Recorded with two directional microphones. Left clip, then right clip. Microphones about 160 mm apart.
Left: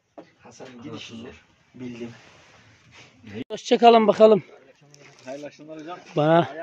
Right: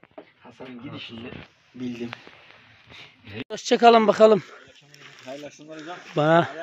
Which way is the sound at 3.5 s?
5° left (ahead or behind).